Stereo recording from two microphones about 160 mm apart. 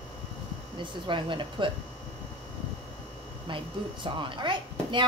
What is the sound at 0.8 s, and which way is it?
Speech, 30° right (ahead or behind).